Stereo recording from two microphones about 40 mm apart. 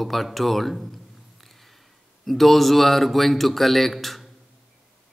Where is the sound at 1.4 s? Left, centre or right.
Centre.